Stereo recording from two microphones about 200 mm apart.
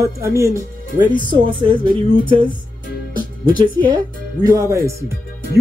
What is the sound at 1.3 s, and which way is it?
Speech, 25° right (ahead or behind).